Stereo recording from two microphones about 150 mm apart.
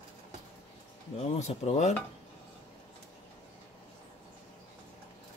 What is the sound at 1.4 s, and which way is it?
Speech, 50° left (ahead or behind).